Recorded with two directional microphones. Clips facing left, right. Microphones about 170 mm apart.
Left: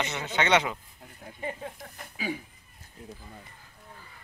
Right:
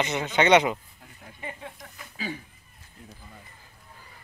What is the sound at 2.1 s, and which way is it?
Speech, 10° left (ahead or behind).